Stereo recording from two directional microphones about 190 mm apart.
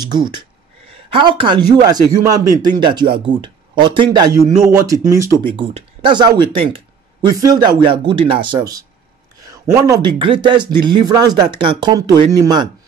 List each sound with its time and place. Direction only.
0.0 s speech: 20° right (ahead or behind)
4.3 s speech: 50° right (ahead or behind)
4.7 s speech: 15° right (ahead or behind)
5.6 s speech: 25° right (ahead or behind)
9.8 s speech: 20° right (ahead or behind)